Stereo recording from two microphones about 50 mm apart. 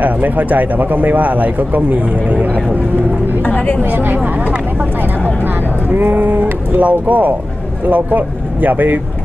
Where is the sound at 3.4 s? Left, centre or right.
Left.